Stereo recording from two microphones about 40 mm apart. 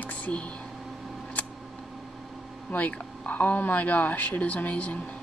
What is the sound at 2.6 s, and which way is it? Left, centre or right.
Speech, left.